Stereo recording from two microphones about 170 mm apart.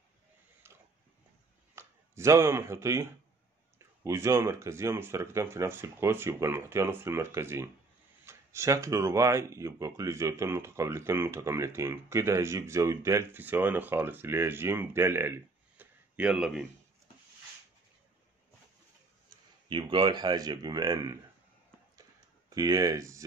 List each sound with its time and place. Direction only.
0.7 s a sound: 15° right (ahead or behind)
1.8 s speech: 15° right (ahead or behind)
19.7 s speech: 30° right (ahead or behind)
22.5 s speech: 20° right (ahead or behind)